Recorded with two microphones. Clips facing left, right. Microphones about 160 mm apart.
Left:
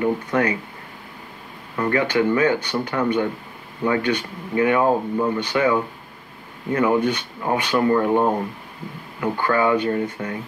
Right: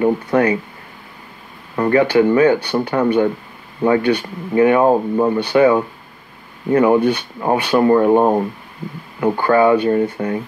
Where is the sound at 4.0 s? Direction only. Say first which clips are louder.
Right 5 dB; 10° right (ahead or behind).